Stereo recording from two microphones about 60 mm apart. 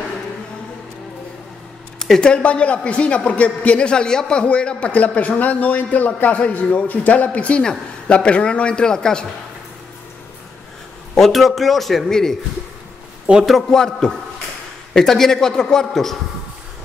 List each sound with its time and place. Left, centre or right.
2.0 s a man's voice: centre
11.1 s a man's voice: centre
13.5 s a man's voice: centre